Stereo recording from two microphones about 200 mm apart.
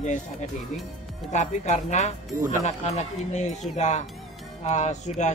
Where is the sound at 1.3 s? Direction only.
35° left (ahead or behind).